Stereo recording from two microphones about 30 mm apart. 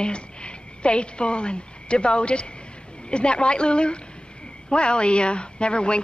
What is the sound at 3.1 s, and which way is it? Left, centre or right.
A woman's voice, left.